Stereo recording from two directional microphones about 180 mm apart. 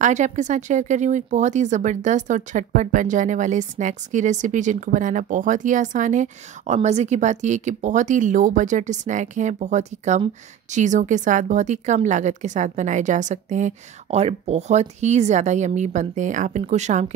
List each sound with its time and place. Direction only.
0.0 s speech: 40° right (ahead or behind)